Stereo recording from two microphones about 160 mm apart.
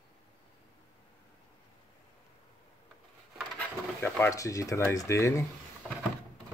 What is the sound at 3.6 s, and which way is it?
Speech, 10° left (ahead or behind).